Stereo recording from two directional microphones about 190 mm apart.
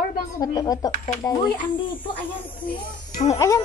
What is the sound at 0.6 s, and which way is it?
Speech, 20° left (ahead or behind).